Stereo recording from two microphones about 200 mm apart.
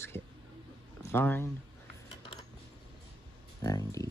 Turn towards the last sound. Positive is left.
turn(degrees=15)  # may be behind; listen again after turning